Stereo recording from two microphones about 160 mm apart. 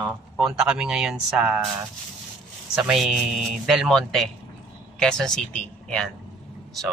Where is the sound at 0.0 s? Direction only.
5° right (ahead or behind).